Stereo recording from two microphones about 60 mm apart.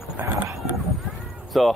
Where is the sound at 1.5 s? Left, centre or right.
Centre.